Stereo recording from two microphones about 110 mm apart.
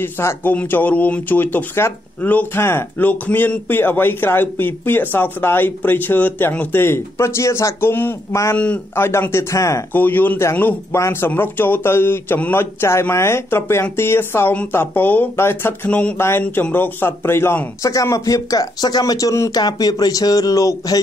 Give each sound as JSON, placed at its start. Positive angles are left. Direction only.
{"t": 0.0, "sound": "speech", "side_deg": 20}
{"t": 8.5, "sound": "speech", "side_deg": 10}
{"t": 9.9, "sound": "a man's voice", "side_deg": 15}